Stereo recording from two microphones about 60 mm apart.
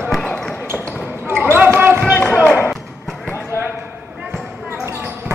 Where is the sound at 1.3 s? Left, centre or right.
Right.